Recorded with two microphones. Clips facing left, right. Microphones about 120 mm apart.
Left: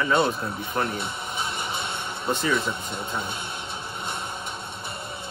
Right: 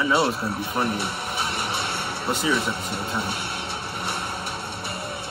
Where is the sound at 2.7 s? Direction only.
65° right (ahead or behind).